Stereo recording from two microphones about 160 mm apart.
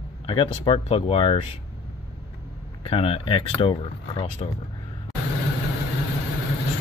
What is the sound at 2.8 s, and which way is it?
Speech, 35° left (ahead or behind).